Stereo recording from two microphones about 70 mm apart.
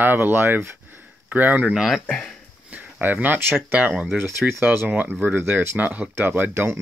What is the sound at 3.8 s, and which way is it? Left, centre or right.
Speech, centre.